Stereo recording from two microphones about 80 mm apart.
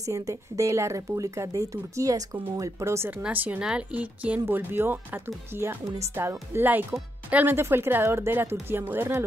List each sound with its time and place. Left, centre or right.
0.0 s speech: right
3.1 s speech: centre